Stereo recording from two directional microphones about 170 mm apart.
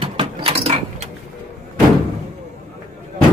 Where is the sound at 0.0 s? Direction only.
30° right (ahead or behind).